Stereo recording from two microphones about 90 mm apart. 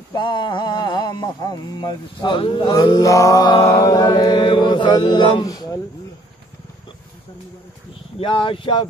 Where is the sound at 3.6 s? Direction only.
40° left (ahead or behind).